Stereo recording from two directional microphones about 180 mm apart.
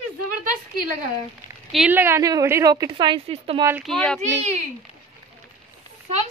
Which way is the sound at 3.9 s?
5° left (ahead or behind).